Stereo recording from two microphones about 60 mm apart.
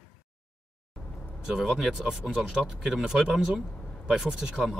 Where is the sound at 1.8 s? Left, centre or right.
Centre.